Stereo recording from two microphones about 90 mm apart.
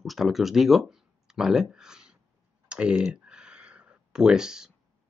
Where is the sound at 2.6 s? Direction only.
10° right (ahead or behind).